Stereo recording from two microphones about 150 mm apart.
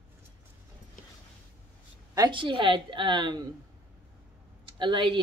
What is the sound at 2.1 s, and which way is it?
Speech, 30° right (ahead or behind).